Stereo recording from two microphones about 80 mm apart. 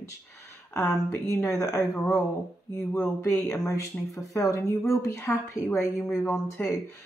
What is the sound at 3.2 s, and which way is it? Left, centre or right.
Speech, left.